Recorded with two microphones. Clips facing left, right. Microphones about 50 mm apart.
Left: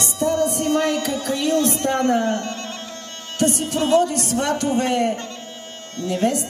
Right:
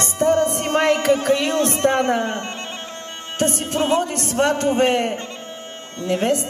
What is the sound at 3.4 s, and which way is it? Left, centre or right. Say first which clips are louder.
A man's voice: even; right.